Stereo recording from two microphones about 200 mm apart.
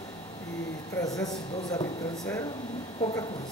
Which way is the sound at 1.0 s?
20° left (ahead or behind).